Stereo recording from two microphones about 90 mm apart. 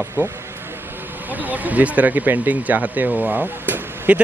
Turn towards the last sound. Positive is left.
turn(degrees=-20)  # may be behind; listen again after turning